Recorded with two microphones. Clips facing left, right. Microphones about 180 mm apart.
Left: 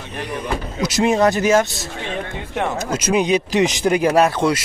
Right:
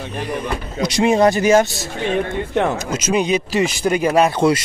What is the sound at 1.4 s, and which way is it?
Speech, centre (ahead or behind).